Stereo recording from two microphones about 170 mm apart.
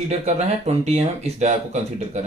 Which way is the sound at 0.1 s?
40° right (ahead or behind).